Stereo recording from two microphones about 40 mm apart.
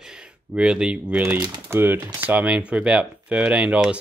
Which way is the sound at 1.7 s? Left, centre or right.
Right.